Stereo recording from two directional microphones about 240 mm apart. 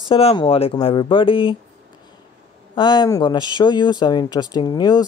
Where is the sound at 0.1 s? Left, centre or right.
Left.